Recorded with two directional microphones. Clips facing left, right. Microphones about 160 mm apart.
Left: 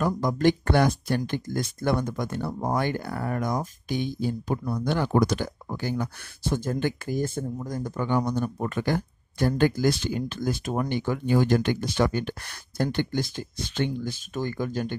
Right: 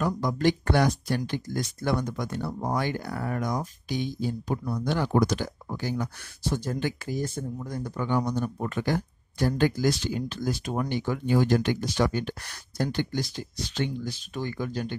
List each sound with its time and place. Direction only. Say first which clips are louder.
0.0 s speech: left 2 dB; 45° left (ahead or behind)